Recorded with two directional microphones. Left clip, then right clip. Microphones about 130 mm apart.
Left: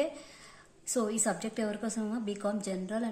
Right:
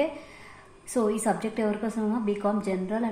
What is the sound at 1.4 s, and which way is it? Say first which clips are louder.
Speech: right 7 dB; 35° left (ahead or behind).